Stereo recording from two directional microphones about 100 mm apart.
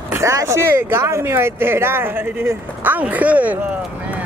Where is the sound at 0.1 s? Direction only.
30° right (ahead or behind); by 3.5 s 15° right (ahead or behind).